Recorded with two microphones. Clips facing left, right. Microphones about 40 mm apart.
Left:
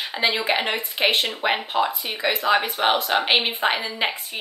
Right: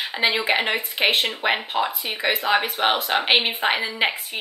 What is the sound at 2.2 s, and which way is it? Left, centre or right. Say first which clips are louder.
Speech: right 1 dB; centre.